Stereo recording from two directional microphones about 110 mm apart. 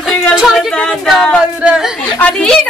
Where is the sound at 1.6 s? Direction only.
10° right (ahead or behind).